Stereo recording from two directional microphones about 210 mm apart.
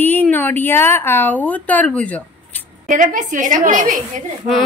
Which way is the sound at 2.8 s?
35° right (ahead or behind).